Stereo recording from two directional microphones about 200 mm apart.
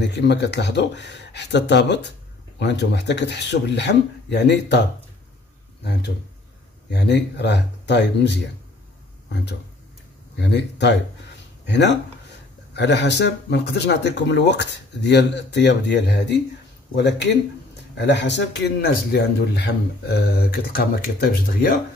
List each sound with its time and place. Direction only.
0.0 s speech: 60° left (ahead or behind)
6.9 s speech: 60° left (ahead or behind)